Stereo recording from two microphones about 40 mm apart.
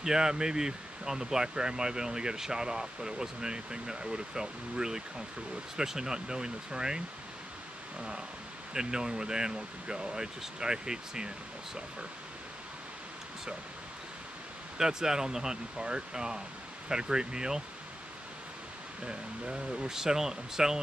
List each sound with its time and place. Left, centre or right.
0.0 s speech: centre
8.7 s speech: centre
14.8 s speech: centre
19.0 s speech: right